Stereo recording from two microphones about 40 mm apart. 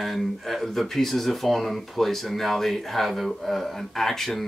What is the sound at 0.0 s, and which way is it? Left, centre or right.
Speech, centre.